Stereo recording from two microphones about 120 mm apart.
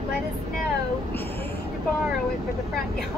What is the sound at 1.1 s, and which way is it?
Speech, 15° left (ahead or behind).